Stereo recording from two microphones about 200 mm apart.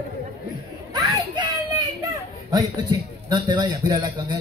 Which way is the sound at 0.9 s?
20° right (ahead or behind).